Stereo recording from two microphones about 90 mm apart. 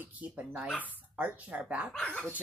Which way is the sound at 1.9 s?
10° left (ahead or behind).